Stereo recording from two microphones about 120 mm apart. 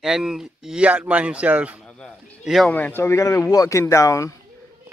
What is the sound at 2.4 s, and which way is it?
Speech, centre (ahead or behind).